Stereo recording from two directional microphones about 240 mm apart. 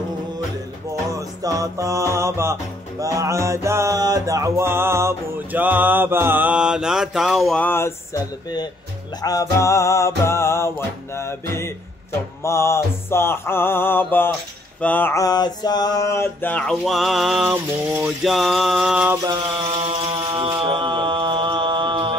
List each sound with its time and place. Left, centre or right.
1.1 s music: centre
9.2 s mantra: centre
11.1 s music: centre
12.4 s mantra: centre
19.2 s mantra: centre